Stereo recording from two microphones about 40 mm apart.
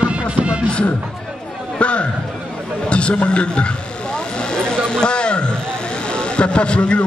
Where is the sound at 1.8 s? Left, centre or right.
Left.